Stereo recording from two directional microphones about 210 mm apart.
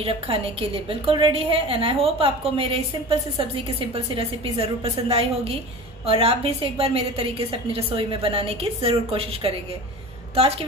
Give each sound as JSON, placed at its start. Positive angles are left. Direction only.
{"t": 0.0, "sound": "a woman's voice", "side_deg": -25}